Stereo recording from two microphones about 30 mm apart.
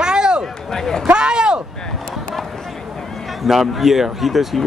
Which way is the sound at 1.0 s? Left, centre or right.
Right.